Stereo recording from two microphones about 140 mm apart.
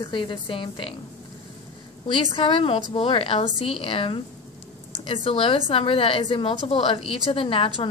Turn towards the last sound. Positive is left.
turn(degrees=40)  # may be behind; listen again after turning